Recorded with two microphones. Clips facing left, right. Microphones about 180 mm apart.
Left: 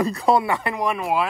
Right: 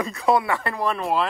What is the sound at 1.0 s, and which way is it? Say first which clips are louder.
Speech: left 1 dB; centre (ahead or behind).